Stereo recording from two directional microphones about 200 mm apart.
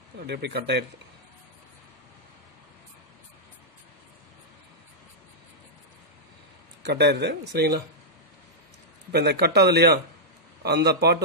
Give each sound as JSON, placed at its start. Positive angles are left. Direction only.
{"t": 0.3, "sound": "speech", "side_deg": -55}
{"t": 6.8, "sound": "speech", "side_deg": -55}
{"t": 9.1, "sound": "a man's voice", "side_deg": -55}